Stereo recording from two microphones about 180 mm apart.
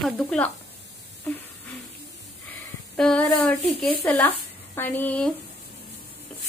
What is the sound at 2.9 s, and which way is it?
Speech, 5° left (ahead or behind).